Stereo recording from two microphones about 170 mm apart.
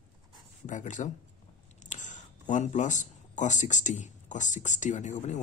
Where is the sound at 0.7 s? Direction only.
45° left (ahead or behind).